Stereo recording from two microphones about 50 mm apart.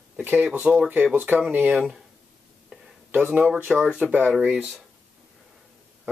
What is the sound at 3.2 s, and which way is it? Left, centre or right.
Speech, right.